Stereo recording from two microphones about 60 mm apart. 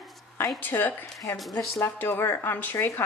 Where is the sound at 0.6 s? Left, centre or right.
Left.